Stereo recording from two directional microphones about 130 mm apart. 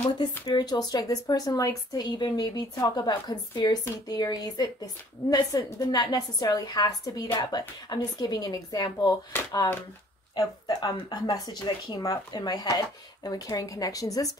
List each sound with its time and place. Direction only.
0.5 s speech: 30° left (ahead or behind)
10.3 s speech: 30° left (ahead or behind)